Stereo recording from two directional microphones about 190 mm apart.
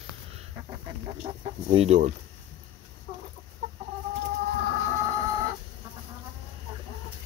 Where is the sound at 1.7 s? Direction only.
35° right (ahead or behind).